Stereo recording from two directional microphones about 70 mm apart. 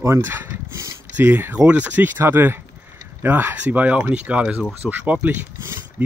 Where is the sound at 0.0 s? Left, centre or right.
Right.